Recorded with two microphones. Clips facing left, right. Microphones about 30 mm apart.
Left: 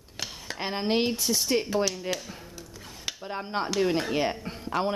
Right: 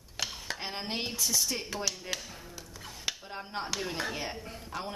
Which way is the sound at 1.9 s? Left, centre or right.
Centre.